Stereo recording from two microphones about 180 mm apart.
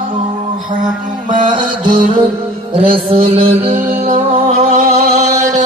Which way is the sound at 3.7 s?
50° right (ahead or behind).